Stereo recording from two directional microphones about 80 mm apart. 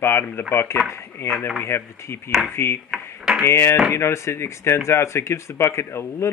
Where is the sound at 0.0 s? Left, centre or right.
Left.